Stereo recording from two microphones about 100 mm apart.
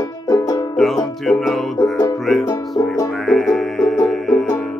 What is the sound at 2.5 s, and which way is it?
Music, 30° left (ahead or behind).